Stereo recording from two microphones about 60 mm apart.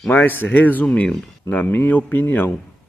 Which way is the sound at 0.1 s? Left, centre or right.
Left.